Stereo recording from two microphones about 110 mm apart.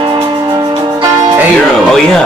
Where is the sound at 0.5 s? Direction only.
35° right (ahead or behind).